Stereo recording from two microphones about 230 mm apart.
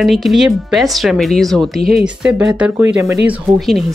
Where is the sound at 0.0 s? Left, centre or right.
Centre.